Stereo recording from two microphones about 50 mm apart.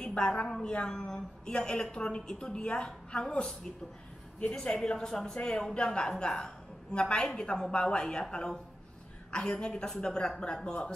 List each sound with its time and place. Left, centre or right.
0.0 s a woman's voice: centre